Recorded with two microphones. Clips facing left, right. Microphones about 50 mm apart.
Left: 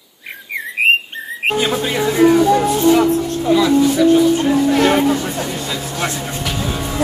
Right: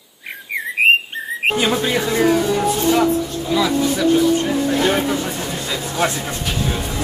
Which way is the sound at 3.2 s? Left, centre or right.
Left.